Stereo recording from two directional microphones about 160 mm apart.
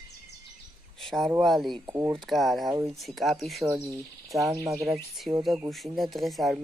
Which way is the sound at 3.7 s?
20° right (ahead or behind).